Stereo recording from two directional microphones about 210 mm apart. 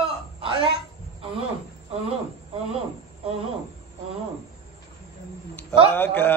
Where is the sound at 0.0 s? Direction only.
25° right (ahead or behind).